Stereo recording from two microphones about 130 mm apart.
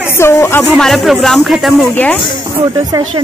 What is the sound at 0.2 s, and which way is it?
Speech, 20° left (ahead or behind).